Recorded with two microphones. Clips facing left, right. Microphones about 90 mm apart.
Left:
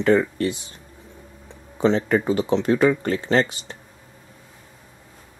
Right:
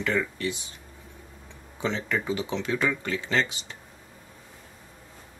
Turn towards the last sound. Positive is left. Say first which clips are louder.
# left 7 dB
turn(degrees=40)  # may be behind; listen again after turning